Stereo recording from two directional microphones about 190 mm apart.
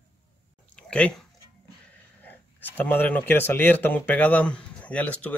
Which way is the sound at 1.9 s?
10° left (ahead or behind).